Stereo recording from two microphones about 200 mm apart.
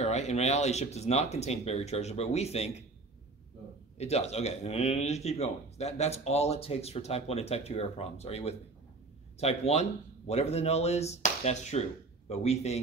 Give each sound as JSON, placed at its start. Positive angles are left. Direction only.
{"t": 0.0, "sound": "speech", "side_deg": 35}
{"t": 4.0, "sound": "speech", "side_deg": 30}